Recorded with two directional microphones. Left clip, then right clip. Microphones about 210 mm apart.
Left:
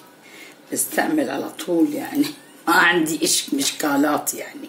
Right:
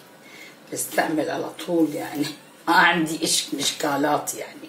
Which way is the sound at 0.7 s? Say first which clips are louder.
Left 2 dB; 50° left (ahead or behind).